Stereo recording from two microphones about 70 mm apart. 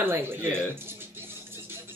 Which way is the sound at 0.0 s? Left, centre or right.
Right.